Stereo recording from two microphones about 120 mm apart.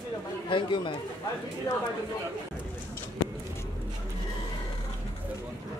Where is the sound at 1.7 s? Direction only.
30° left (ahead or behind).